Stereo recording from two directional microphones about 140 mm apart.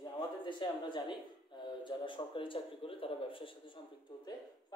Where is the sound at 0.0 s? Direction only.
35° left (ahead or behind).